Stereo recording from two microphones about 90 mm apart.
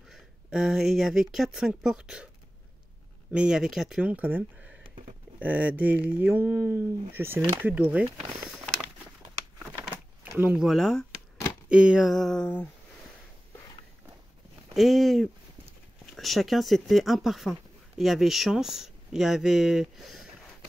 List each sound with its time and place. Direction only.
0.1 s speech: 5° right (ahead or behind)
3.3 s speech: 10° right (ahead or behind)
4.0 s speech: 15° right (ahead or behind)
10.4 s speech: 15° right (ahead or behind)
10.7 s speech: 5° left (ahead or behind)
11.7 s speech: 10° right (ahead or behind); by 12.6 s 10° left (ahead or behind)
14.7 s speech: centre (ahead or behind)